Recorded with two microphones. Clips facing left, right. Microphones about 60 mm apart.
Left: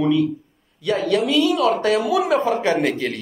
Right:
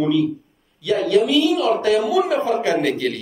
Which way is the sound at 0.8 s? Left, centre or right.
Left.